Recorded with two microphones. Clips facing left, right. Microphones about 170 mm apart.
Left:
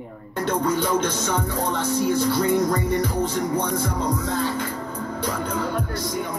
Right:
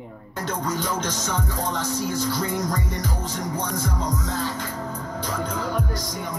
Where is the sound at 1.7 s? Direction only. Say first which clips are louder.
Left 7 dB; 60° left (ahead or behind).